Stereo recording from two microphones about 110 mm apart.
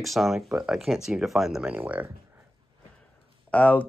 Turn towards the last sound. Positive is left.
turn(degrees=15)  # may be behind; listen again after turning